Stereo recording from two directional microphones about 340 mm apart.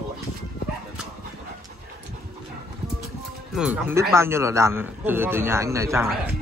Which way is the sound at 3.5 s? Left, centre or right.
Centre.